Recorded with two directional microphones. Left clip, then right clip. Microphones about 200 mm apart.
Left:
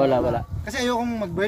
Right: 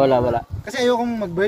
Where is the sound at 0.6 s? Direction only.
25° left (ahead or behind).